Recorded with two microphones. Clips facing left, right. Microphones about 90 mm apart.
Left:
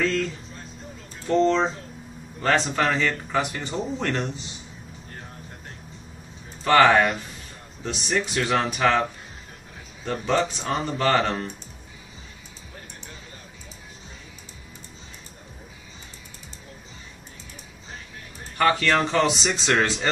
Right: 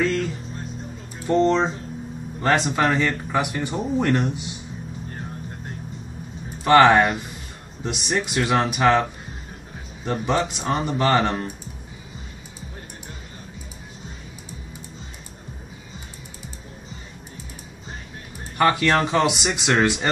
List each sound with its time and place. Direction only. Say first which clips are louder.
0.0 s music: right 2 dB; 10° right (ahead or behind)
1.2 s speech: right 1 dB; 15° right (ahead or behind)
6.6 s speech: right 3 dB; 20° right (ahead or behind)
10.0 s speech: right 1 dB; 15° right (ahead or behind)
18.6 s speech: right 2 dB; 15° right (ahead or behind)